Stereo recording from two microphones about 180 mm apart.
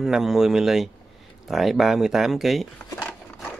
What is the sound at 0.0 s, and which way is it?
Speech, centre (ahead or behind).